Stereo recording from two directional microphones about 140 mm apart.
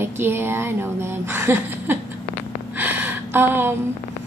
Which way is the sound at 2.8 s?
15° right (ahead or behind).